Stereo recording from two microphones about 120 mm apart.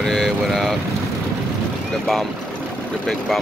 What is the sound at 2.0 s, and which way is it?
Speech, 5° left (ahead or behind).